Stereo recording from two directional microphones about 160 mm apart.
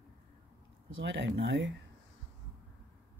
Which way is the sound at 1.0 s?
90° right.